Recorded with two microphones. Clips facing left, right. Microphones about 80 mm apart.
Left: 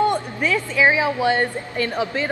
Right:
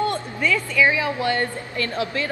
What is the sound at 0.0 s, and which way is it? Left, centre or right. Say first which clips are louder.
Speech: left 3 dB; centre.